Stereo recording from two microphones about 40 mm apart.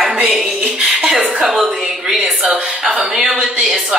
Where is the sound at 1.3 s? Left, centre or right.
Centre.